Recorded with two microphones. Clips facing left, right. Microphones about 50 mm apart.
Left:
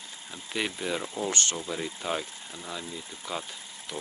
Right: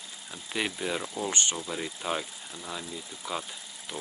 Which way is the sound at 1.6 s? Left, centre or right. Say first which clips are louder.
Left 1 dB; centre.